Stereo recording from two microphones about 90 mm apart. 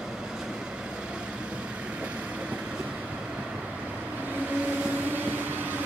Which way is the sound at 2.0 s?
15° right (ahead or behind).